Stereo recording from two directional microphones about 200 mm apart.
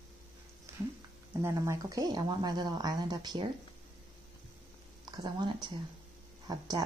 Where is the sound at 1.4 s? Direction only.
15° right (ahead or behind).